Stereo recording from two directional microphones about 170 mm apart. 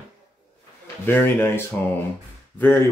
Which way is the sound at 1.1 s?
10° left (ahead or behind).